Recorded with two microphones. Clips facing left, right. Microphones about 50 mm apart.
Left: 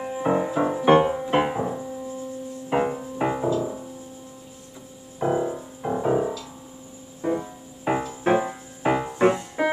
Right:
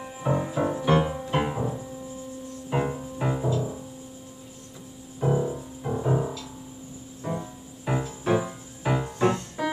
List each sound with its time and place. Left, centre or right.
0.0 s music: left
0.8 s music: left
5.2 s music: left